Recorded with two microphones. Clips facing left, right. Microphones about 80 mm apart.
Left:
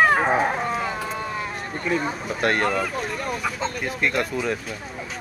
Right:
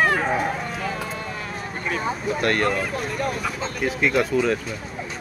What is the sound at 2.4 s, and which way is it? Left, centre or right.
Speech, left.